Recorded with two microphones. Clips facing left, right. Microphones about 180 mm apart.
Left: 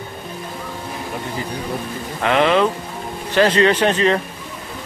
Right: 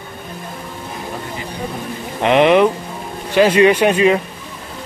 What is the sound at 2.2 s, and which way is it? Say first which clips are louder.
Speech: right 4 dB; 20° right (ahead or behind).